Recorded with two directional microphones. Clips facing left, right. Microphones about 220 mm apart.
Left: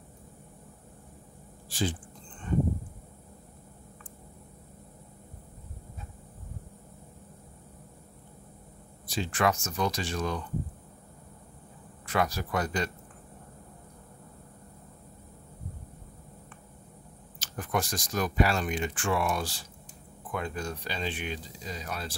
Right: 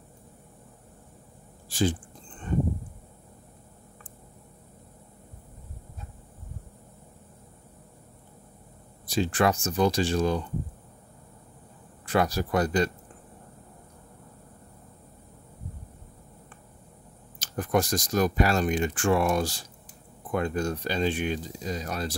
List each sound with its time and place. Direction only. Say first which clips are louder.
1.7 s speech: right 5 dB; 45° right (ahead or behind)
9.0 s speech: right 4 dB; 40° right (ahead or behind)
12.1 s speech: right 4 dB; 35° right (ahead or behind)
17.4 s speech: right 6 dB; 40° right (ahead or behind)